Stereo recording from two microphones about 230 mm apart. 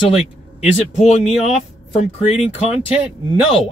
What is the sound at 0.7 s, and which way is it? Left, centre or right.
Speech, centre.